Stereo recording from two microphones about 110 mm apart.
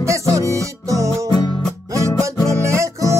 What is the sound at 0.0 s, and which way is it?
Music, 30° right (ahead or behind).